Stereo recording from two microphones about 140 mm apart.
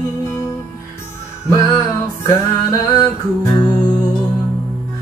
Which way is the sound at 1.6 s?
20° left (ahead or behind).